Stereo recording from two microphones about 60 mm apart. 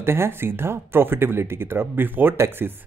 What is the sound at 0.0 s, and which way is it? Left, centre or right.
Speech, right.